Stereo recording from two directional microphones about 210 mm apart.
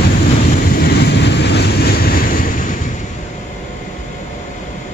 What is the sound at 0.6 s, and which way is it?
Vehicle, 50° left (ahead or behind).